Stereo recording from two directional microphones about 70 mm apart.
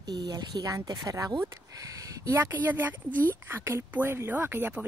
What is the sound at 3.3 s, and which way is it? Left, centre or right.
Speech, right.